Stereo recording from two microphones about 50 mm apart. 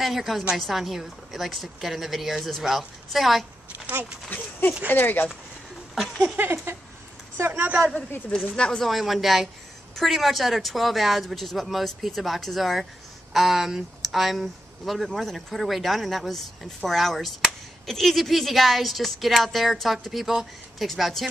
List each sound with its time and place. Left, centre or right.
0.0 s speech: centre
4.3 s speech: left
5.9 s speech: centre
6.5 s a sound: right
8.5 s speech: centre
8.8 s speech: centre